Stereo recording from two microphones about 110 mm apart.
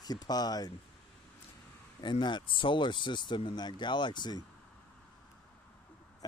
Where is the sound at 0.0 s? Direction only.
40° left (ahead or behind).